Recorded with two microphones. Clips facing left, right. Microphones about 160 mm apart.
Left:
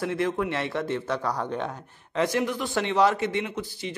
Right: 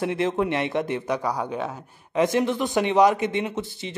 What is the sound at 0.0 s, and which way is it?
A man's voice, 20° right (ahead or behind).